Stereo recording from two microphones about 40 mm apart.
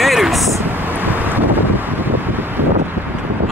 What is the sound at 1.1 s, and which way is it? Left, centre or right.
Wind, right.